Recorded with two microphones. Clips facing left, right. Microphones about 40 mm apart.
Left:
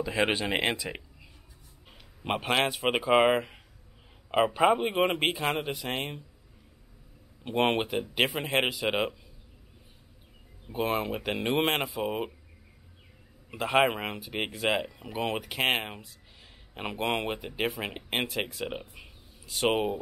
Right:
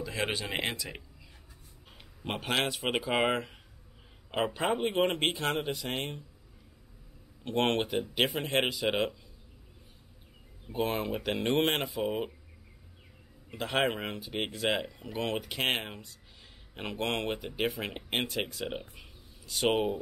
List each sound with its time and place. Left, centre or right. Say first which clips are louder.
0.0 s speech: left 6 dB; left
2.2 s speech: left 4 dB; centre
7.4 s speech: left 2 dB; centre
10.7 s speech: left 2 dB; centre
13.5 s speech: left 5 dB; centre